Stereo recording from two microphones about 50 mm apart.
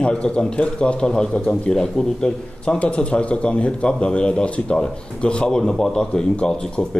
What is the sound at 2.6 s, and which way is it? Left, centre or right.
A man's voice, left.